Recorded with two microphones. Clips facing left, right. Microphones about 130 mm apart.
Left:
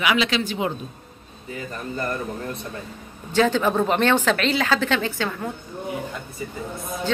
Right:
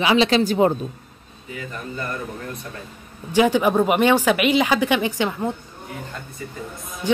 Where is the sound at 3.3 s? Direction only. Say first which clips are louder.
Right 2 dB; 15° right (ahead or behind).